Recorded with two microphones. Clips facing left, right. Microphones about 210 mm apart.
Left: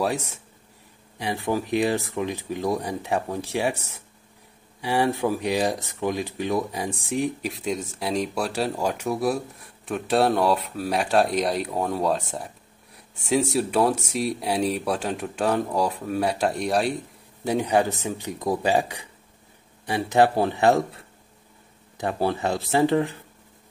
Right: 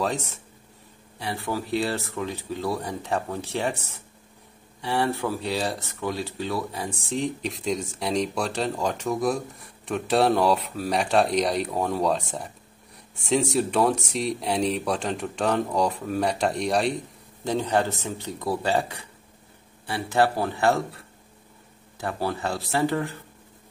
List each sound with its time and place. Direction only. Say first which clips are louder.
1.1 s speech: left 4 dB; 15° left (ahead or behind)
4.8 s speech: left 3 dB; 15° left (ahead or behind)
7.4 s speech: even; 5° left (ahead or behind)
17.5 s a man's voice: left 2 dB; 15° left (ahead or behind)